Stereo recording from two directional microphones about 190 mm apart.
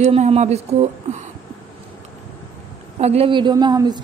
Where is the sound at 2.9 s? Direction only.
35° right (ahead or behind).